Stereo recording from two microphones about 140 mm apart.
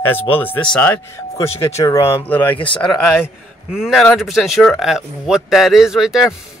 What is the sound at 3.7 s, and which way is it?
Speech, centre (ahead or behind).